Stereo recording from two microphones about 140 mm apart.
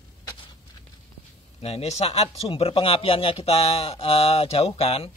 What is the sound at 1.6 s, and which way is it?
Speech, 45° left (ahead or behind).